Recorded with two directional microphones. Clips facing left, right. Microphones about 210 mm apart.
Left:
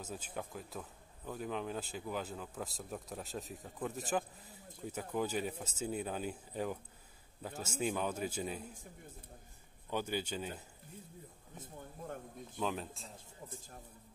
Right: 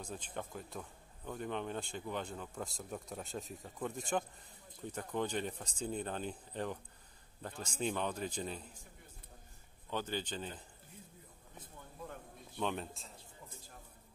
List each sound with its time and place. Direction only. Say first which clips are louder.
0.0 s speech: even; 5° left (ahead or behind)
9.8 s speech: left 2 dB; 10° left (ahead or behind)
11.5 s speech: left 4 dB; 45° left (ahead or behind)
12.5 s speech: even; centre (ahead or behind)